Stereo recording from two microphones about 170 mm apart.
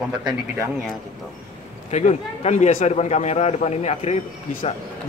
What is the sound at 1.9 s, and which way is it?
A man's voice, 40° left (ahead or behind).